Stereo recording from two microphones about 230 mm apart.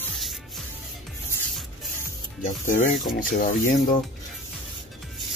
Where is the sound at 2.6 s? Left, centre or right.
Left.